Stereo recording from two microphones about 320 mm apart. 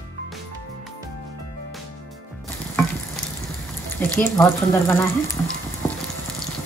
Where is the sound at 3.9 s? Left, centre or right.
Centre.